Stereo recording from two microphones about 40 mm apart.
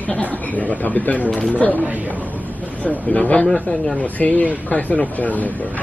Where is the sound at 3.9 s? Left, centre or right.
Left.